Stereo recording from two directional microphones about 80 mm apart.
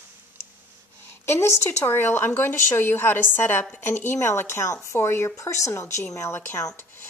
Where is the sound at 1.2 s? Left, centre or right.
Left.